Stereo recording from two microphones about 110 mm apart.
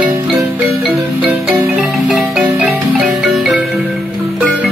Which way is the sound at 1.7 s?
15° right (ahead or behind).